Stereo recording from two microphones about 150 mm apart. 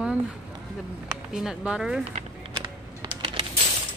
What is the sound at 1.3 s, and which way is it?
Speech, 5° right (ahead or behind).